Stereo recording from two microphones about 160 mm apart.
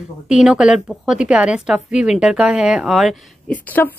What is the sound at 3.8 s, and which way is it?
Speech, 10° left (ahead or behind).